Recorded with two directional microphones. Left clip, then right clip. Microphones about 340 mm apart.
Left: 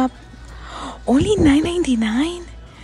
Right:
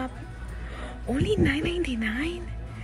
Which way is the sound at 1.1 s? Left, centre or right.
Centre.